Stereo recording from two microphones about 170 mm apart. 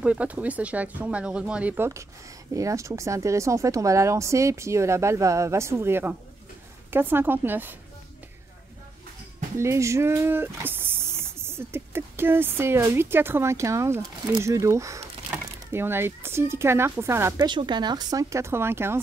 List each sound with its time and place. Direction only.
0.0 s speech: 10° right (ahead or behind)
9.6 s speech: 15° right (ahead or behind)
17.5 s speech: 25° right (ahead or behind)